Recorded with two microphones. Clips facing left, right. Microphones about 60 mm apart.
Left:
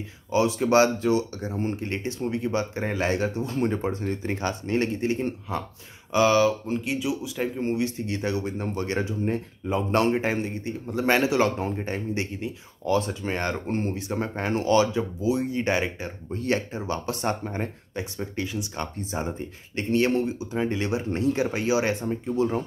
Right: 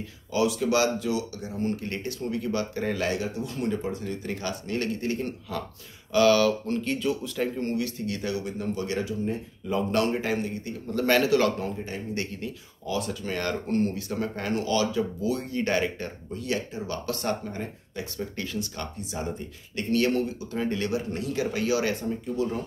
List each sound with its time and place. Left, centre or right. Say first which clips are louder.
0.3 s speech: left 3 dB; left; by 7.7 s centre
7.7 s speech: left 2 dB; left
11.7 s speech: left 4 dB; left
12.1 s speech: left 3 dB; left
16.3 s speech: left 4 dB; left; by 18.7 s centre
18.8 s speech: left 3 dB; left